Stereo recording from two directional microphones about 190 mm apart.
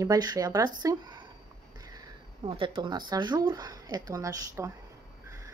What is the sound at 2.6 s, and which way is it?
Speech, 25° right (ahead or behind).